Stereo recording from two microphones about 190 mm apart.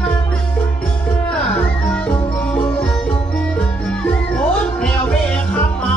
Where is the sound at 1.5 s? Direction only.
5° left (ahead or behind).